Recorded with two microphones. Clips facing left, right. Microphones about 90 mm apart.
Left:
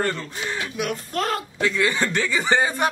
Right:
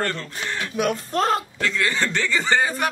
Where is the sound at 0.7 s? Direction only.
35° right (ahead or behind).